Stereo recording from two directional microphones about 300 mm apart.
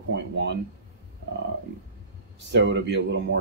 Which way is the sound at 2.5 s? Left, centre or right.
Right.